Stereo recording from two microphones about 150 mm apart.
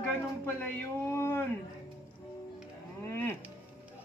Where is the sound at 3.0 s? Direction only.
15° left (ahead or behind).